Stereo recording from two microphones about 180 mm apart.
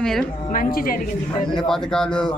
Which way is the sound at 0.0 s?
5° left (ahead or behind).